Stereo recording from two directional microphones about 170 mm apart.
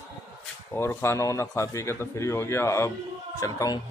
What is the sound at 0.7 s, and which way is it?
A man's voice, 15° left (ahead or behind).